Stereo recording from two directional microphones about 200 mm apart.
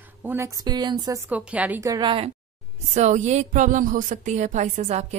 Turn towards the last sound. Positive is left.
turn(degrees=-35)  # may be behind; listen again after turning